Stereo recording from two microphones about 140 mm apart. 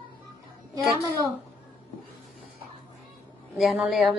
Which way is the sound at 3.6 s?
5° right (ahead or behind).